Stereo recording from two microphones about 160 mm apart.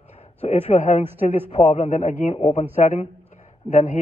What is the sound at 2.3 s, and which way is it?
Speech, 40° left (ahead or behind).